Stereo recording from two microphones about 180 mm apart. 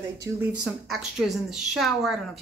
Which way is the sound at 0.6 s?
Centre (ahead or behind).